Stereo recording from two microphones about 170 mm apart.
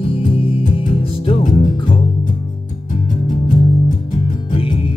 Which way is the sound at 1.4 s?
50° left (ahead or behind).